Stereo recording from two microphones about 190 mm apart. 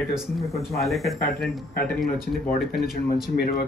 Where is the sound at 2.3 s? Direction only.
50° left (ahead or behind).